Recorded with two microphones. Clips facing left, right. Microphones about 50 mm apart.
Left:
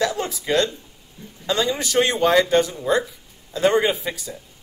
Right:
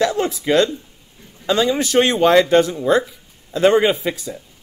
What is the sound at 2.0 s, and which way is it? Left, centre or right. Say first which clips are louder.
Speech: right 4 dB; right.